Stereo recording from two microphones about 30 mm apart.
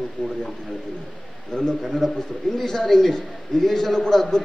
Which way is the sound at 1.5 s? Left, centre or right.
Left.